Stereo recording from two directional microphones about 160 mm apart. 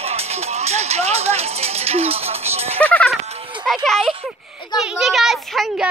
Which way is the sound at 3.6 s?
Centre (ahead or behind).